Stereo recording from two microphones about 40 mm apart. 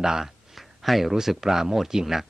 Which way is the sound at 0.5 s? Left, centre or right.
Centre.